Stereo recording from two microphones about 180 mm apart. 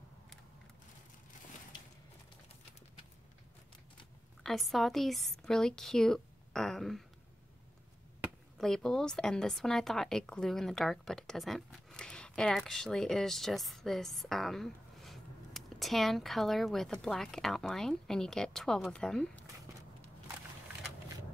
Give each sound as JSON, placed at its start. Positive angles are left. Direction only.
{"t": 4.4, "sound": "a woman's voice", "side_deg": 0}
{"t": 8.5, "sound": "a woman's voice", "side_deg": 5}